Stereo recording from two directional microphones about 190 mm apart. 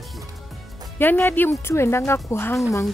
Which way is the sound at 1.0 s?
10° left (ahead or behind).